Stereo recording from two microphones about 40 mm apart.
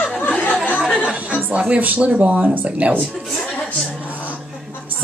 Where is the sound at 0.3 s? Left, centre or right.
Left.